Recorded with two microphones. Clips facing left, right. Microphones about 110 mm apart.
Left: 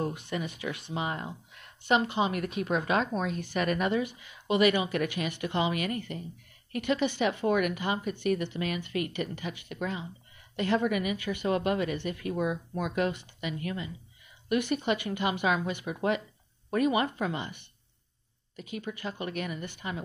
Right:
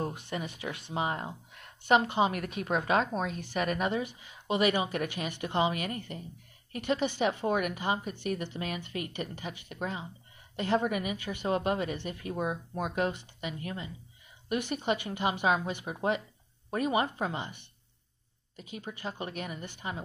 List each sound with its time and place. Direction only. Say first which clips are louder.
0.0 s speech: left 2 dB; 35° right (ahead or behind)
18.8 s speech: left 2 dB; 30° right (ahead or behind)